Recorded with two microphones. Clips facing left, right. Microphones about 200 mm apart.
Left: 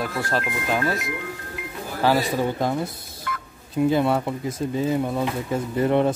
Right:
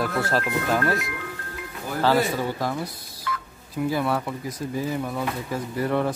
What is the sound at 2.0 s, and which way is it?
Speech, 20° left (ahead or behind).